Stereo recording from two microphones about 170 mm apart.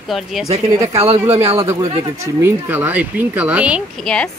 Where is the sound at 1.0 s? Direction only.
40° right (ahead or behind).